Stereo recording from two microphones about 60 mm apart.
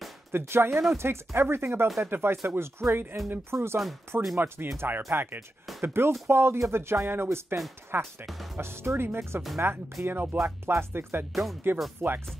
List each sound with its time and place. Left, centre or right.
0.3 s speech: right
2.0 s speech: right
2.4 s speech: right
4.1 s speech: right
7.9 s speech: right
10.3 s speech: right
12.0 s speech: right